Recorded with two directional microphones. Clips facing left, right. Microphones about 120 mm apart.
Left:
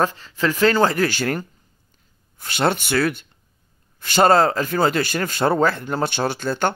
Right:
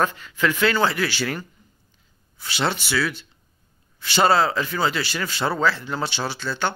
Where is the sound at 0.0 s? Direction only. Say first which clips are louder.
Left 1 dB; 35° left (ahead or behind).